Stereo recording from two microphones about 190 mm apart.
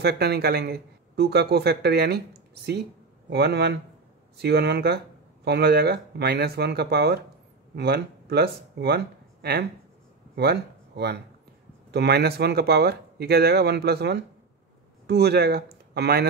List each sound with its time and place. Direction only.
0.0 s speech: 60° right (ahead or behind)